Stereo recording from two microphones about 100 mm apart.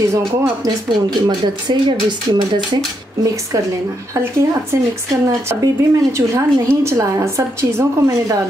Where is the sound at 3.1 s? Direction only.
35° right (ahead or behind).